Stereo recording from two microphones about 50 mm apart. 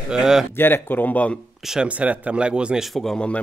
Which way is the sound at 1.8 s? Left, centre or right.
Right.